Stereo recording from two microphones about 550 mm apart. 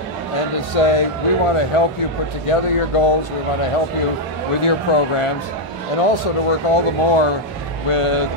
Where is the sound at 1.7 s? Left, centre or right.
Left.